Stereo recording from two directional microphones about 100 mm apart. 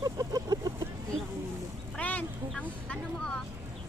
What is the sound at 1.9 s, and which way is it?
Vehicle, 15° left (ahead or behind).